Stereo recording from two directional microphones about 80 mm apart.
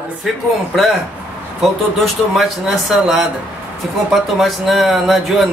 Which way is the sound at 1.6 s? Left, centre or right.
Centre.